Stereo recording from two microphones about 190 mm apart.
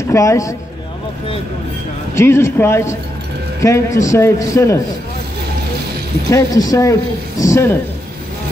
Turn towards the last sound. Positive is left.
turn(degrees=15)  # may be behind; listen again after turning